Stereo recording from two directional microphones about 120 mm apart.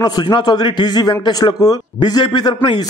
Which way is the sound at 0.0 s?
35° left (ahead or behind).